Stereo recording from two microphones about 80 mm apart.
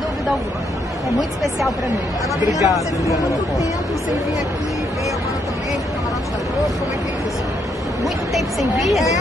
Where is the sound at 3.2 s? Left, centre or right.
Left.